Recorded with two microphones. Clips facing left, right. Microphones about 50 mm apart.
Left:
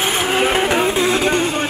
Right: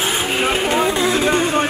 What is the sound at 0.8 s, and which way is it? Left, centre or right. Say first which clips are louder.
Speech: even; centre.